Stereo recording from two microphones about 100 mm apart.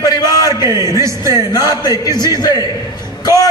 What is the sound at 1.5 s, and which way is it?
Speech, 40° left (ahead or behind).